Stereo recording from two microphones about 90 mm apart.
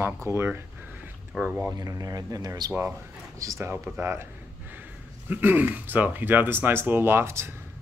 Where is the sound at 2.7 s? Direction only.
30° right (ahead or behind).